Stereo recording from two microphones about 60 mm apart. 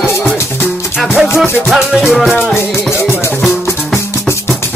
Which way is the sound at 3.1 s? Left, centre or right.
Centre.